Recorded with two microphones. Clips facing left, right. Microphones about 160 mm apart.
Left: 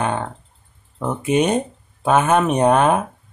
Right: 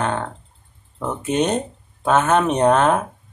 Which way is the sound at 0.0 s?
10° left (ahead or behind).